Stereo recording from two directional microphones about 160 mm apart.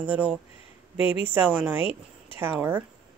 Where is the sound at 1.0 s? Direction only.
10° right (ahead or behind).